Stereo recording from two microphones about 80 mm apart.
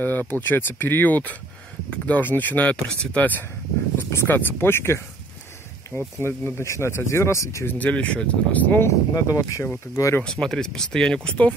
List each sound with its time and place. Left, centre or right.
0.0 s speech: left
7.6 s speech: centre
9.1 s speech: left
10.2 s speech: centre